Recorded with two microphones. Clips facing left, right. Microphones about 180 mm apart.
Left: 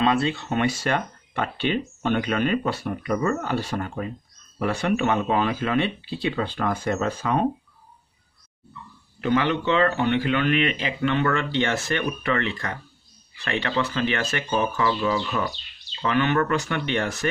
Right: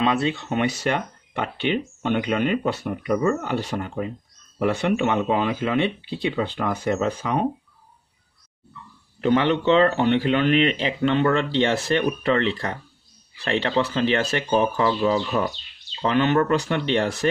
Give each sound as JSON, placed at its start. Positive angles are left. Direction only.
{"t": 0.0, "sound": "speech", "side_deg": -20}
{"t": 9.2, "sound": "speech", "side_deg": -30}